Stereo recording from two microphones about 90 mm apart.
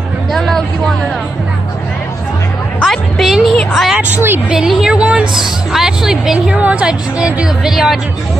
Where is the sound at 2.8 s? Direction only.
Centre (ahead or behind).